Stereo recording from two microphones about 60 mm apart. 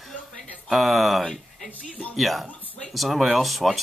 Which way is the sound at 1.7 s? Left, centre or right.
Left.